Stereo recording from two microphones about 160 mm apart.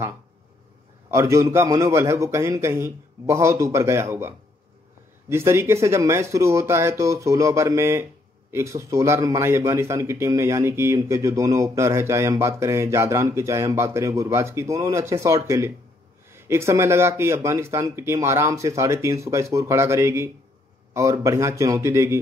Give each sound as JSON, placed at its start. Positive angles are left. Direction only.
{"t": 1.1, "sound": "speech", "side_deg": -20}
{"t": 5.3, "sound": "speech", "side_deg": -15}